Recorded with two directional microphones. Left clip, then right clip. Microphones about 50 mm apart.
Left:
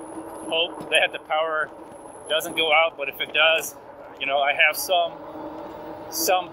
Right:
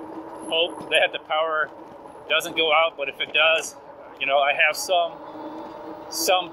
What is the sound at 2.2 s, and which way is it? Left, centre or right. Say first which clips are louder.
Speech: right 2 dB; right.